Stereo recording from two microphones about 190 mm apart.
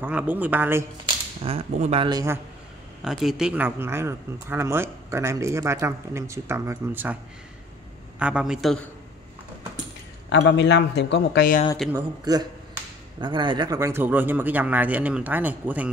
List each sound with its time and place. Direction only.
0.0 s speech: 10° right (ahead or behind)
1.0 s speech: 30° right (ahead or behind)
3.0 s speech: centre (ahead or behind)
8.2 s a man's voice: 5° right (ahead or behind)
10.3 s speech: 65° left (ahead or behind)
11.9 s speech: 20° right (ahead or behind)